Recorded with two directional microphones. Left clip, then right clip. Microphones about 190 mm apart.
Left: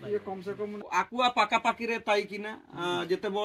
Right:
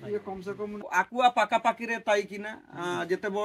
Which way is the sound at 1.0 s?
10° right (ahead or behind).